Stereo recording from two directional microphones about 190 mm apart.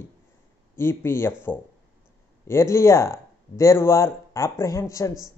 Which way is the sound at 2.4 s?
15° left (ahead or behind).